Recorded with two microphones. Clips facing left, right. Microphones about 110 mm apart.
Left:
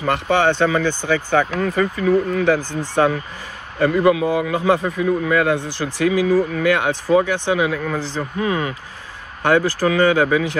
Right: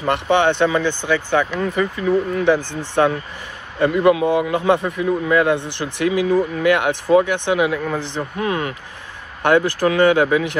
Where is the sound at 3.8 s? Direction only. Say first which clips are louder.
Right 1 dB; 20° right (ahead or behind).